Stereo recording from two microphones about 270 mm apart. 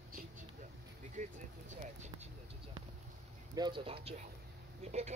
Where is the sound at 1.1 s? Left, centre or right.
Right.